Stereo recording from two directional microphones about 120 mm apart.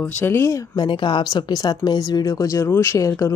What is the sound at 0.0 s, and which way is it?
Speech, 15° left (ahead or behind).